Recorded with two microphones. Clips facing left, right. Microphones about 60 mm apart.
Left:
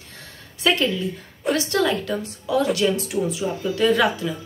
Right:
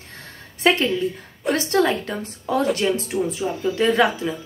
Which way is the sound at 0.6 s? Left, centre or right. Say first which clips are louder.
Right 2 dB; right.